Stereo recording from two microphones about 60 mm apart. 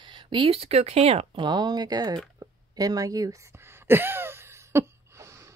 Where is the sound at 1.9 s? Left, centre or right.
Right.